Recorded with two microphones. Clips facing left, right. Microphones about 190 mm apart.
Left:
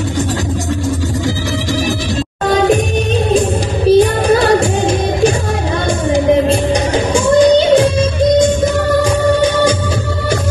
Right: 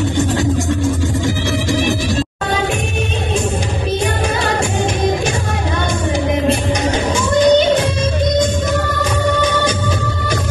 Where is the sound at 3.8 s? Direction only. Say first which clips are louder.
Left 12 dB; 35° left (ahead or behind).